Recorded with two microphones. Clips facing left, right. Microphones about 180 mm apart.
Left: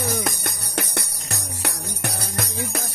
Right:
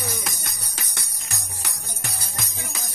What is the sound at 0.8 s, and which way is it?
Music, 65° left (ahead or behind).